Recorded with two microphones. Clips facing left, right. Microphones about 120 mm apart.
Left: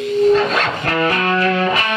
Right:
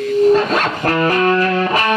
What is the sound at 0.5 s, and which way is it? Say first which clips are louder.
Music: right 2 dB; 40° right (ahead or behind).